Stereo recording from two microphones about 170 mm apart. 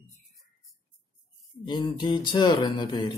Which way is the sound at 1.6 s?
25° left (ahead or behind).